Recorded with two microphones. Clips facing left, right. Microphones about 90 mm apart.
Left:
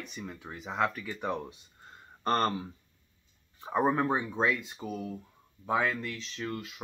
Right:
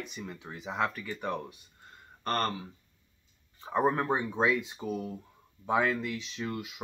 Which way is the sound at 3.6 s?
5° left (ahead or behind).